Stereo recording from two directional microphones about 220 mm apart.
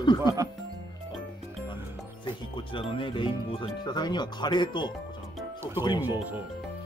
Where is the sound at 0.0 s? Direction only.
20° left (ahead or behind).